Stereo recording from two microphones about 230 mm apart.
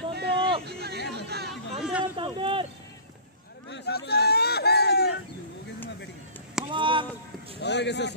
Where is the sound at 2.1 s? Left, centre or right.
Right.